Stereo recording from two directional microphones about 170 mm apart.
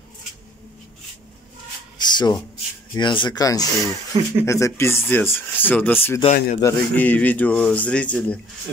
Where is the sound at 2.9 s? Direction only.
25° left (ahead or behind).